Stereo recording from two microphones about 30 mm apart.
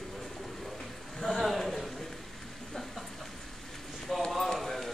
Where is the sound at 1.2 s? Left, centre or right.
Centre.